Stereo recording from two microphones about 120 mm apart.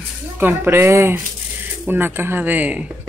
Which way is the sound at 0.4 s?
20° right (ahead or behind).